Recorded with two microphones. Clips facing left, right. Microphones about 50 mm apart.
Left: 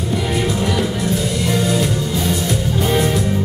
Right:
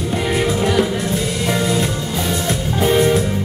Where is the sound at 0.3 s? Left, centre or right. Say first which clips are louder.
Right 3 dB; right.